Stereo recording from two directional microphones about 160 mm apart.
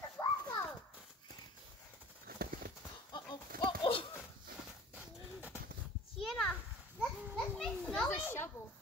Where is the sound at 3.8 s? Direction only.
35° left (ahead or behind).